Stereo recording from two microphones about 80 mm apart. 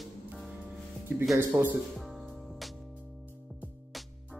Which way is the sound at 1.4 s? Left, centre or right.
Right.